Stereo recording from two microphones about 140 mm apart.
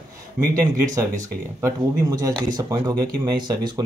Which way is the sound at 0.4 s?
5° right (ahead or behind).